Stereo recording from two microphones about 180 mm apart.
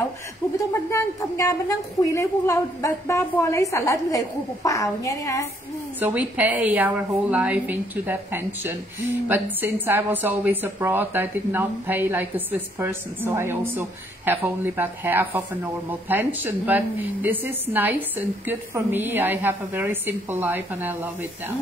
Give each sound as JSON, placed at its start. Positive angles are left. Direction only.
{"t": 0.6, "sound": "a woman's voice", "side_deg": 15}
{"t": 5.9, "sound": "a woman's voice", "side_deg": -10}